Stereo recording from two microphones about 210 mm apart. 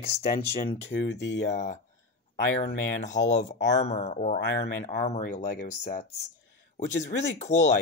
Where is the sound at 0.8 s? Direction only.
55° left (ahead or behind).